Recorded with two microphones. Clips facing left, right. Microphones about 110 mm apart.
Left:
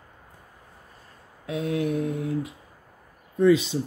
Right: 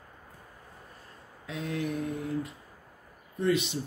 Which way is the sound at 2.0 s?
15° left (ahead or behind).